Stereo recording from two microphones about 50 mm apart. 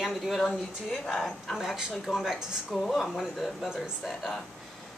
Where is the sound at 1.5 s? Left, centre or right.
Centre.